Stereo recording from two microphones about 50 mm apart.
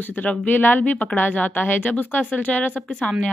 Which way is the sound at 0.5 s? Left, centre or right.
Left.